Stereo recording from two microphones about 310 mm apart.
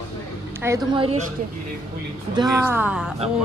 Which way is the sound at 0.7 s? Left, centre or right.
Centre.